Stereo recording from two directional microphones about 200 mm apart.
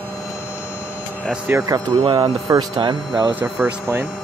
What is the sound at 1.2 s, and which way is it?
Speech, 5° right (ahead or behind).